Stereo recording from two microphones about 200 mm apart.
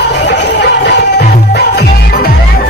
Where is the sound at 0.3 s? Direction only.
60° left (ahead or behind).